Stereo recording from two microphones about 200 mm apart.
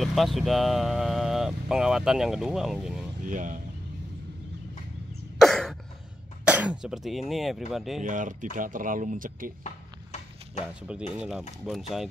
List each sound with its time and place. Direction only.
0.0 s speech: centre (ahead or behind)
3.3 s speech: 40° right (ahead or behind)
5.4 s cough: centre (ahead or behind)
6.4 s speech: 5° right (ahead or behind)
8.0 s speech: 40° right (ahead or behind)
10.8 s speech: 5° right (ahead or behind)